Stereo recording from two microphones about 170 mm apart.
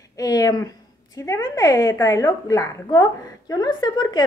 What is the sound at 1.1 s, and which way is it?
A woman's voice, 20° left (ahead or behind).